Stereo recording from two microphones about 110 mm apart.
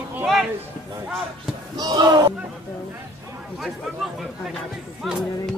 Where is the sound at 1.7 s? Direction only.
40° right (ahead or behind).